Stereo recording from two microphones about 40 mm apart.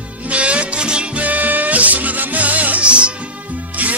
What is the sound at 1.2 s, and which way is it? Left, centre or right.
Music, right.